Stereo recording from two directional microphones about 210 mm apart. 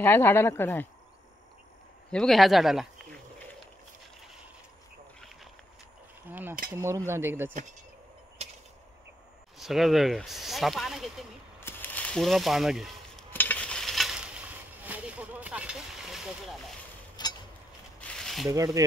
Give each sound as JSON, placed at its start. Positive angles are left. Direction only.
{"t": 0.0, "sound": "speech", "side_deg": 10}
{"t": 2.0, "sound": "speech", "side_deg": 0}
{"t": 6.7, "sound": "speech", "side_deg": -15}
{"t": 9.6, "sound": "speech", "side_deg": 0}
{"t": 11.6, "sound": "a sound", "side_deg": 10}
{"t": 13.3, "sound": "stir", "side_deg": 10}
{"t": 14.9, "sound": "vehicle", "side_deg": -5}
{"t": 17.2, "sound": "a sound", "side_deg": 20}
{"t": 18.0, "sound": "a sound", "side_deg": 0}
{"t": 18.5, "sound": "speech", "side_deg": -15}